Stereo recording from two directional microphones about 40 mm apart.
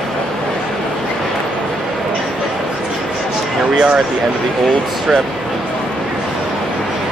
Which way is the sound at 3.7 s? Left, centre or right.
Right.